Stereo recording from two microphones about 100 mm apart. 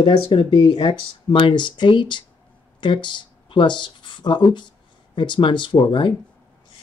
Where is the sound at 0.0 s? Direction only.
60° left (ahead or behind).